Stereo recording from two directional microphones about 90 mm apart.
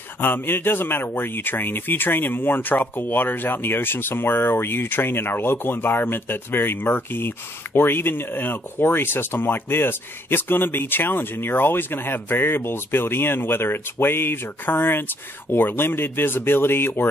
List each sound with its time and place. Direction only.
0.2 s speech: 25° left (ahead or behind)